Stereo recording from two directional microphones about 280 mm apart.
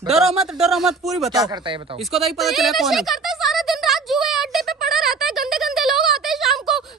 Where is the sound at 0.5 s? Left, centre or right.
Centre.